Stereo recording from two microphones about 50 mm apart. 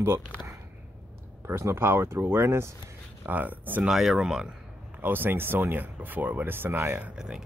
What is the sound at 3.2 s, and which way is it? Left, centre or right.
Speech, right.